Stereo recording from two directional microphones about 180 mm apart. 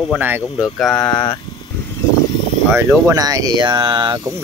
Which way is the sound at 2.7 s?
15° right (ahead or behind).